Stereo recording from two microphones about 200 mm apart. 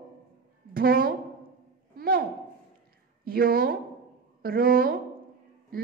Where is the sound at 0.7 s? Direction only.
45° right (ahead or behind).